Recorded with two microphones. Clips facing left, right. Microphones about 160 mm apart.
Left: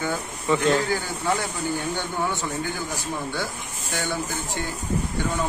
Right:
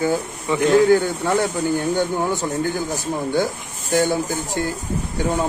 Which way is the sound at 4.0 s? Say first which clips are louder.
Right 9 dB; 40° right (ahead or behind).